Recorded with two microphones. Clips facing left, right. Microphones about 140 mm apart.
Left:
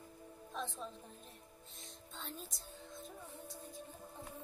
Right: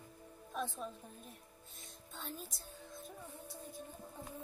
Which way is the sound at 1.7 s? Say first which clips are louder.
Even; 5° right (ahead or behind).